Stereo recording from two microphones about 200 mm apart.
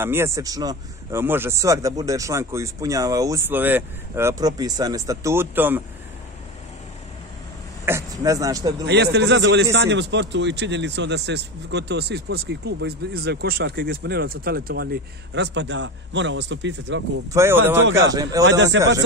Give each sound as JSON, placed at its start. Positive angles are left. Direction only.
{"t": 0.0, "sound": "a man's voice", "side_deg": -10}
{"t": 7.8, "sound": "speech", "side_deg": -15}
{"t": 8.8, "sound": "a man's voice", "side_deg": -55}
{"t": 17.3, "sound": "a man's voice", "side_deg": -10}
{"t": 18.4, "sound": "a man's voice", "side_deg": -65}